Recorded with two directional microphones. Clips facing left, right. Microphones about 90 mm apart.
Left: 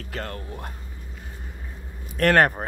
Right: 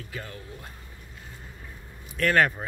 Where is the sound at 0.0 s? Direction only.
60° left (ahead or behind).